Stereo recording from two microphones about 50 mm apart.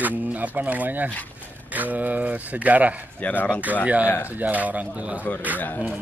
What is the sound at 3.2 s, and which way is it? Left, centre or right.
Speech, left.